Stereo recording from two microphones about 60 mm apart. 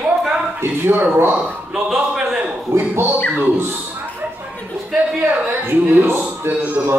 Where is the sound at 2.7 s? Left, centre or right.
Right.